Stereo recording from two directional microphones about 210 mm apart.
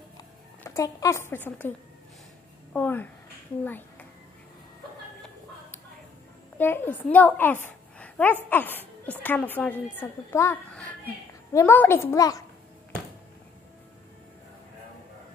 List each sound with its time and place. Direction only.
0.2 s a woman's voice: 15° left (ahead or behind)
2.7 s a child's voice: 10° left (ahead or behind)
6.6 s a woman's voice: 10° left (ahead or behind)